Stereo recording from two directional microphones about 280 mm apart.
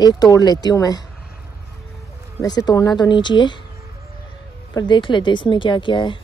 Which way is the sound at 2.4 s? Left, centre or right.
Centre.